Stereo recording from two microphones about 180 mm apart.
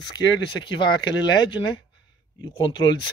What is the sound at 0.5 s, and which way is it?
Speech, 25° left (ahead or behind).